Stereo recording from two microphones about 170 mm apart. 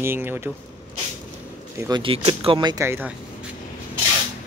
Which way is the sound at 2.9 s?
10° right (ahead or behind).